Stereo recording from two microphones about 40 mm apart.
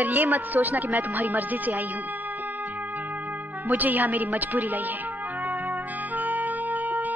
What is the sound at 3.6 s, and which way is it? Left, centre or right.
Speech, right.